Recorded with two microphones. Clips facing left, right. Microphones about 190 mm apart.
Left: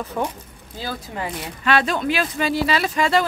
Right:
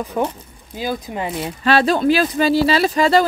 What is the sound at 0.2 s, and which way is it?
Speech, 15° right (ahead or behind).